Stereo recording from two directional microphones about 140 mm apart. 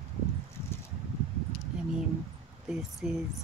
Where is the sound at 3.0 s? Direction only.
5° right (ahead or behind).